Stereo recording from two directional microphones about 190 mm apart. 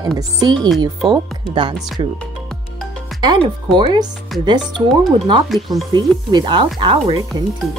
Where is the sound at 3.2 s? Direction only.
25° right (ahead or behind).